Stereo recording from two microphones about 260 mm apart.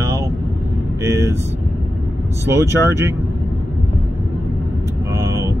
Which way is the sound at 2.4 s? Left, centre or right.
Centre.